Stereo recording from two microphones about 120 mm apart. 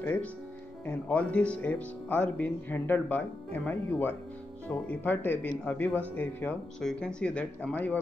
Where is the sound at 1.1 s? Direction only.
10° left (ahead or behind).